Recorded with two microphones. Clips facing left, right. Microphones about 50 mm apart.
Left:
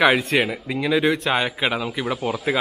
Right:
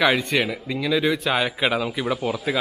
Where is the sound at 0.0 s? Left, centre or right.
Centre.